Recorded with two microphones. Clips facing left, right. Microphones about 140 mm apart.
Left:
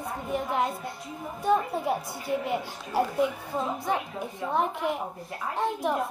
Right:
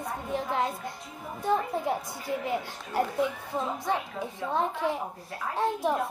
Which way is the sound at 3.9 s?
10° left (ahead or behind).